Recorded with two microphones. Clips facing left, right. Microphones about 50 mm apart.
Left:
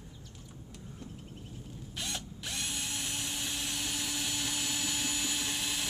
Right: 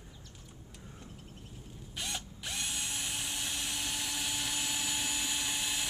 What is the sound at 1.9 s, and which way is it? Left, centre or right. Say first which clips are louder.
Drill: even; centre.